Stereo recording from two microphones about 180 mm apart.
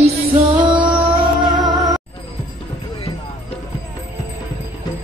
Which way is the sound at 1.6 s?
20° right (ahead or behind).